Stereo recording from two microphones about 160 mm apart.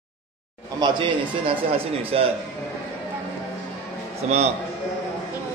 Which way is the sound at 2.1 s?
35° right (ahead or behind).